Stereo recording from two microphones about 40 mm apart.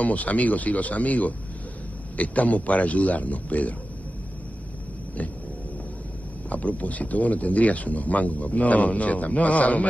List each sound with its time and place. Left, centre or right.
0.0 s speech: left
6.5 s speech: left